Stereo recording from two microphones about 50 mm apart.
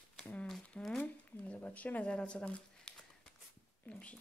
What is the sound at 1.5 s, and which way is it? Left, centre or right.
Speech, left.